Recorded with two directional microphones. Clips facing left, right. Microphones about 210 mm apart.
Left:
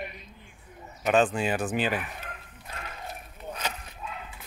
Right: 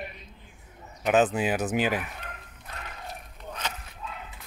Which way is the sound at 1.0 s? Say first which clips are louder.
Right 1 dB; 5° right (ahead or behind).